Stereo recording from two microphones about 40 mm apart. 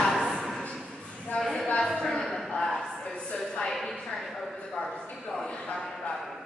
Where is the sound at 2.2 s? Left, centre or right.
Centre.